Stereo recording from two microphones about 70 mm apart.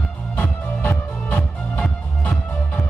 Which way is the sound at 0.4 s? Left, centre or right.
Centre.